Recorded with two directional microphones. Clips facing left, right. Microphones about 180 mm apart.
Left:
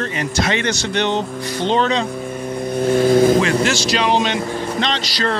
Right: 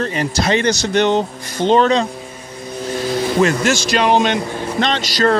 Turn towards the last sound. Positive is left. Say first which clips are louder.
# right 5 dB
turn(degrees=-45)  # may be behind; listen again after turning